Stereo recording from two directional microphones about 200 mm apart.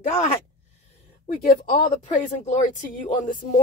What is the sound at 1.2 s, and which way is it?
A woman's voice, 45° left (ahead or behind).